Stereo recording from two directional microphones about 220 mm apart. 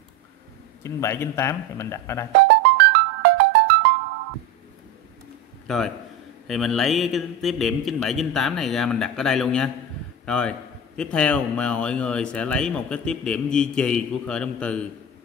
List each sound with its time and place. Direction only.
0.8 s speech: 10° left (ahead or behind)
2.4 s music: 55° right (ahead or behind)
6.4 s speech: centre (ahead or behind)